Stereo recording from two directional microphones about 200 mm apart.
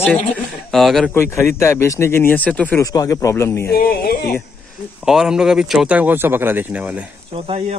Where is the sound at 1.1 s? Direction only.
15° left (ahead or behind).